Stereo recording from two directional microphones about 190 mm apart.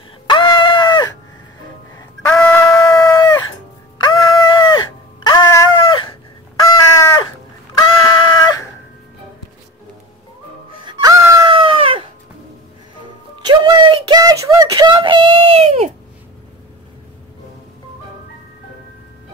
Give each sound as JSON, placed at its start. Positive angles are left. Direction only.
{"t": 0.3, "sound": "screaming", "side_deg": 25}
{"t": 2.0, "sound": "chicken", "side_deg": 10}
{"t": 4.0, "sound": "music", "side_deg": 20}
{"t": 5.2, "sound": "dog", "side_deg": 20}
{"t": 6.7, "sound": "crow", "side_deg": 15}
{"t": 7.7, "sound": "a sound", "side_deg": 20}
{"t": 10.9, "sound": "music", "side_deg": -20}
{"t": 11.4, "sound": "chicken", "side_deg": -25}
{"t": 13.0, "sound": "music", "side_deg": -20}